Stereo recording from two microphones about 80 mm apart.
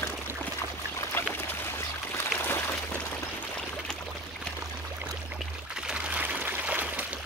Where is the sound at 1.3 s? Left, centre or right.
Left.